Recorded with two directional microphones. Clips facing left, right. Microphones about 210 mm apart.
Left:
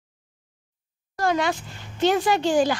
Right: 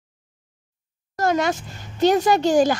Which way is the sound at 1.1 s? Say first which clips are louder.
Right 2 dB; 45° right (ahead or behind).